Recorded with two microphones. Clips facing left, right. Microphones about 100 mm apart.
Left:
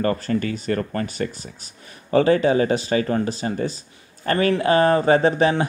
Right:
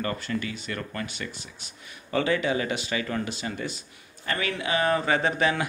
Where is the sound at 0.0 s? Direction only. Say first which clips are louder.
Left 8 dB; 40° left (ahead or behind).